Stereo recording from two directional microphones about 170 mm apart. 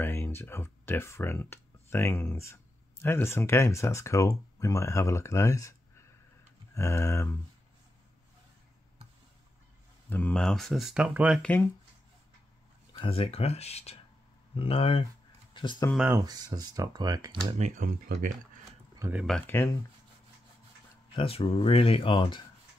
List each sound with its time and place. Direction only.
0.0 s speech: 15° left (ahead or behind)
10.0 s speech: 10° left (ahead or behind); by 11.4 s 5° right (ahead or behind)
11.4 s speech: 10° left (ahead or behind)
13.0 s speech: 35° left (ahead or behind)
15.5 s a sound: 30° left (ahead or behind)
16.1 s speech: 20° right (ahead or behind)
17.6 s speech: 45° right (ahead or behind)
17.8 s speech: 60° right (ahead or behind)
18.9 s speech: 15° right (ahead or behind)
19.2 s speech: 5° left (ahead or behind)
19.5 s speech: 15° left (ahead or behind)
21.1 s speech: 30° left (ahead or behind)